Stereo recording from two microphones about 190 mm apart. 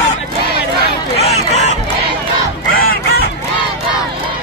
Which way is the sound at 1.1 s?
35° left (ahead or behind).